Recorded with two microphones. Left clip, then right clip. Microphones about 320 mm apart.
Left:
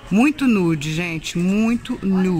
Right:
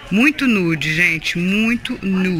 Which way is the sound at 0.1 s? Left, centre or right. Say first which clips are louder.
Right 2 dB; centre.